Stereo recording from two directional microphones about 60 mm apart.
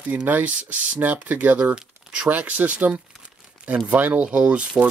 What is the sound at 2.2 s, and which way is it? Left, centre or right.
Speech, right.